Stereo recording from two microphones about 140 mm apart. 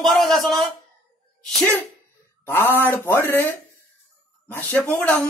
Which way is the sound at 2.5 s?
15° left (ahead or behind).